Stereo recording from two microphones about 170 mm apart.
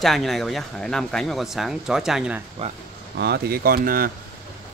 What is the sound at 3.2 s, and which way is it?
Speech, 70° right (ahead or behind).